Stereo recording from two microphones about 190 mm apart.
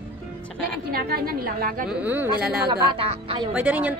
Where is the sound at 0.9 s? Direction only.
50° right (ahead or behind).